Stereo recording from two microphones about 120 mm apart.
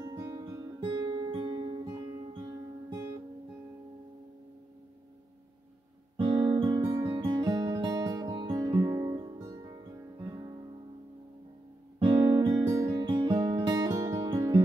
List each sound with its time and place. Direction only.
0.0 s guitar: 30° right (ahead or behind)
2.0 s guitar: 30° right (ahead or behind)
6.1 s guitar: 40° right (ahead or behind)
6.9 s music: 30° right (ahead or behind)
12.3 s music: 35° right (ahead or behind)